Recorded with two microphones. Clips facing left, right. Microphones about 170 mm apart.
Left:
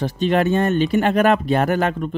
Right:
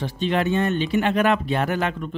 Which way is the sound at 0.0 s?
45° left (ahead or behind).